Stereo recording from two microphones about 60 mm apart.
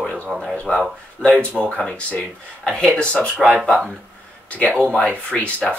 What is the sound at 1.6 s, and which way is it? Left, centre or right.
Speech, centre.